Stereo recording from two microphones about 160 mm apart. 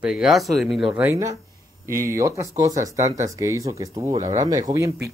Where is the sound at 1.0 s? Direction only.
20° right (ahead or behind).